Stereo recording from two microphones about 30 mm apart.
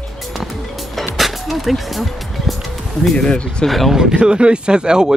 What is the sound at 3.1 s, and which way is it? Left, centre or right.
Speech, left.